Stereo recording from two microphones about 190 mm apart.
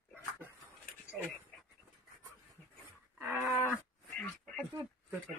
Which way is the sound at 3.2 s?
10° right (ahead or behind).